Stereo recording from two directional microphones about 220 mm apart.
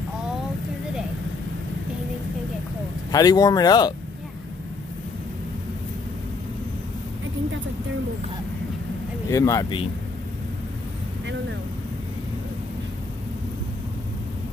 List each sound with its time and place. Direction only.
3.1 s speech: 15° left (ahead or behind)
9.3 s speech: 15° left (ahead or behind)